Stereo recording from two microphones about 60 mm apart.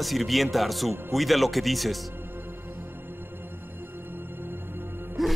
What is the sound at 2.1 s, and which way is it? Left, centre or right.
Music, right.